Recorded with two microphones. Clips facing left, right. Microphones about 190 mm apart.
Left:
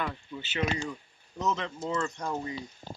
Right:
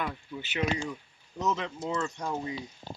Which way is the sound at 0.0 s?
10° right (ahead or behind).